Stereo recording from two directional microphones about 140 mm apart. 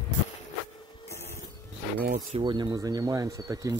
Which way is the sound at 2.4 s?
30° right (ahead or behind).